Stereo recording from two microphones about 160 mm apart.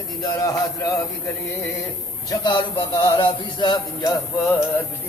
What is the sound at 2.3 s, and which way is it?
Speech, 25° left (ahead or behind).